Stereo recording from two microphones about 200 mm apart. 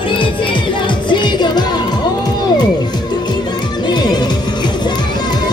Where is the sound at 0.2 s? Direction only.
25° left (ahead or behind).